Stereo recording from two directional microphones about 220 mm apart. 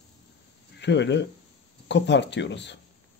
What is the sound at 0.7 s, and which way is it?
A man's voice, 55° left (ahead or behind).